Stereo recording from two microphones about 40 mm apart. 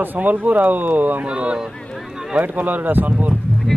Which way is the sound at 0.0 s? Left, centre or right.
Right.